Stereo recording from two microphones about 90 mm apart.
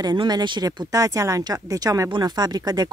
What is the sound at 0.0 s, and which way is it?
Speech, 50° right (ahead or behind).